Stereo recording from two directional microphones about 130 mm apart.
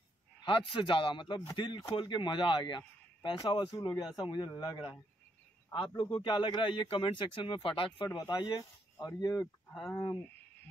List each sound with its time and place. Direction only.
0.7 s speech: 40° left (ahead or behind)
8.1 s speech: 30° left (ahead or behind)